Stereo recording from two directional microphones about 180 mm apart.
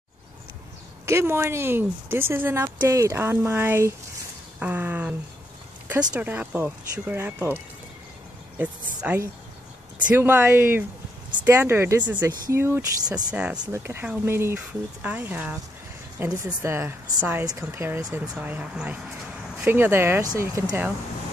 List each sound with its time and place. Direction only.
1.0 s speech: 15° right (ahead or behind)
6.1 s speech: 10° right (ahead or behind)
9.0 s speech: 10° right (ahead or behind)